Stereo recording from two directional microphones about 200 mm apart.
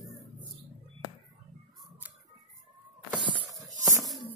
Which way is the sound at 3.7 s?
40° right (ahead or behind).